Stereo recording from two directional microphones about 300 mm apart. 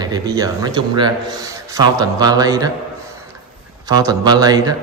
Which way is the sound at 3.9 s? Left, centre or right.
Centre.